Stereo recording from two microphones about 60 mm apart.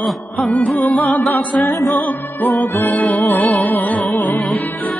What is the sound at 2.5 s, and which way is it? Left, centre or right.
Music, left.